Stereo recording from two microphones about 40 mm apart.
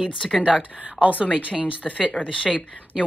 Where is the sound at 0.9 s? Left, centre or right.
Right.